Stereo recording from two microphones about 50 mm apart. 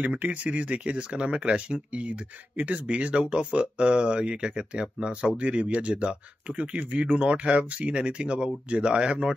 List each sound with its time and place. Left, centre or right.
0.0 s speech: right